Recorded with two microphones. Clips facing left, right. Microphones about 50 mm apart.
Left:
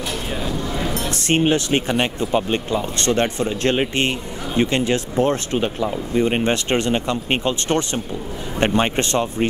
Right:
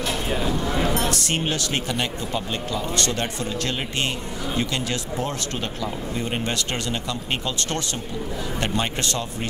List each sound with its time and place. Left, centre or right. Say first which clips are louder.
0.3 s a sound: right 1 dB; centre
1.1 s speech: left 7 dB; left
5.5 s speech: left 7 dB; centre